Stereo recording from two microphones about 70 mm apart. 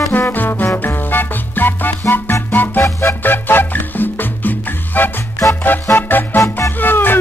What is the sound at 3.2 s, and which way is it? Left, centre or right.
Music, left.